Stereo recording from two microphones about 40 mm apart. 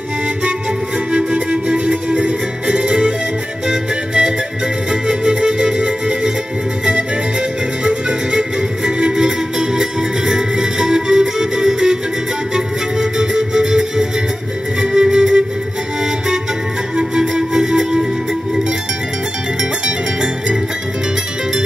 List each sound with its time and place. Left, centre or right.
0.4 s flute: right
3.6 s music: centre
16.9 s music: centre